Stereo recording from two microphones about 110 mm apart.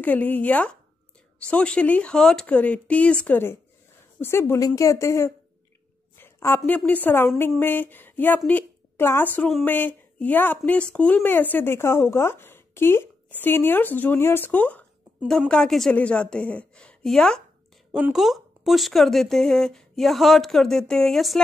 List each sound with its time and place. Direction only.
0.0 s a woman's voice: 15° left (ahead or behind)
6.1 s a sound: 20° left (ahead or behind)
6.9 s a woman's voice: 15° left (ahead or behind); by 21.4 s centre (ahead or behind)